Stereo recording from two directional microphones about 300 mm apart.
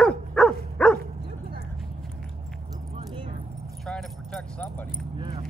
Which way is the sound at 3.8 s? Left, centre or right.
Centre.